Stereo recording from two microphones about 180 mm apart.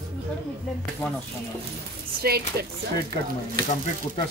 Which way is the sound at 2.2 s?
60° right (ahead or behind).